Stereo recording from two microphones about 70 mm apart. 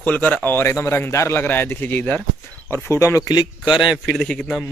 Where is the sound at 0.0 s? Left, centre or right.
Left.